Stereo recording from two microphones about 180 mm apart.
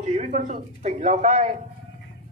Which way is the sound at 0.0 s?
35° right (ahead or behind).